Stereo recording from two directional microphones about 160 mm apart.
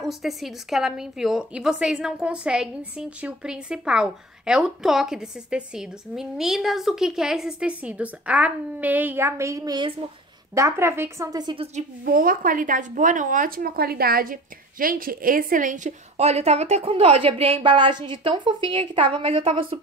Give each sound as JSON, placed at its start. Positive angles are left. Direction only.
{"t": 0.0, "sound": "a woman's voice", "side_deg": 0}
{"t": 12.0, "sound": "speech", "side_deg": -60}